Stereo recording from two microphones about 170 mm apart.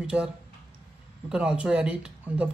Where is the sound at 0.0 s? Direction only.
5° right (ahead or behind).